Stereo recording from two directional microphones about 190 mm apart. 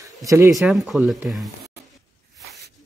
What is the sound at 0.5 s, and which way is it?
Speech, centre (ahead or behind).